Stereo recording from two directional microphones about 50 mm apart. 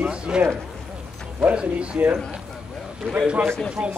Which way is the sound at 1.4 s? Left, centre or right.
Right.